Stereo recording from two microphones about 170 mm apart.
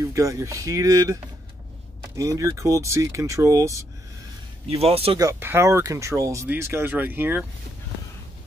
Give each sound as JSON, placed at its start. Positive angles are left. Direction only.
{"t": 0.0, "sound": "speech", "side_deg": -20}
{"t": 2.1, "sound": "speech", "side_deg": -20}
{"t": 4.6, "sound": "speech", "side_deg": -35}
{"t": 5.2, "sound": "speech", "side_deg": -15}